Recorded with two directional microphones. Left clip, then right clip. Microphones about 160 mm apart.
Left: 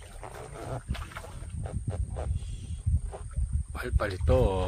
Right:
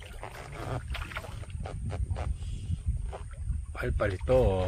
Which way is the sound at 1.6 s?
70° right (ahead or behind).